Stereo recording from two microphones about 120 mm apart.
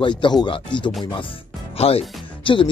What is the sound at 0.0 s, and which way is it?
Speech, 40° left (ahead or behind).